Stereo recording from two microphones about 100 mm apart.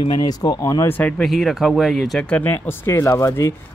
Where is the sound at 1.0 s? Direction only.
15° left (ahead or behind).